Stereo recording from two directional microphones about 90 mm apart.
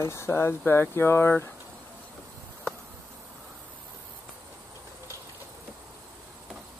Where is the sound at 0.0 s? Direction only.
30° left (ahead or behind).